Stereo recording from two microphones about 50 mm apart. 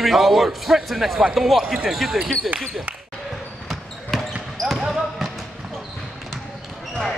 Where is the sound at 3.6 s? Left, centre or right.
Centre.